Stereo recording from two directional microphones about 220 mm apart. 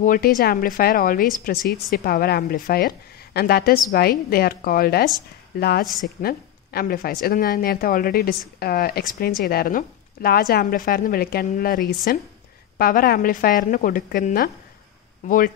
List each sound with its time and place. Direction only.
0.0 s a woman's voice: 40° left (ahead or behind)
5.9 s a woman's voice: centre (ahead or behind)
6.2 s a woman's voice: 45° left (ahead or behind)